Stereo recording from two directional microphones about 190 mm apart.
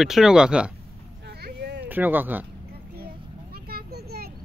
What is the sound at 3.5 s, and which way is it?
Children playing, 55° right (ahead or behind).